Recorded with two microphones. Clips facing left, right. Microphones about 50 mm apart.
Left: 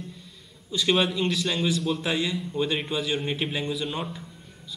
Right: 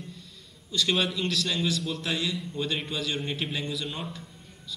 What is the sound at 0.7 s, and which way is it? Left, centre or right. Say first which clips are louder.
Speech: left 3 dB; centre.